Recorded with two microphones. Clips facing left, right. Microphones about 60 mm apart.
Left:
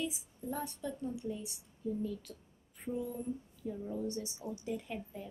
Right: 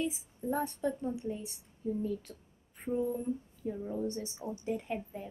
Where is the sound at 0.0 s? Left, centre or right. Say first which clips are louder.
Right 4 dB; right.